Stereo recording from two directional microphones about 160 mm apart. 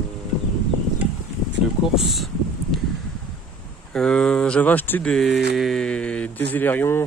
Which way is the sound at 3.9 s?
5° left (ahead or behind).